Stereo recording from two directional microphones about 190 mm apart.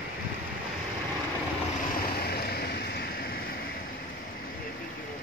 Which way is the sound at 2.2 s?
55° left (ahead or behind).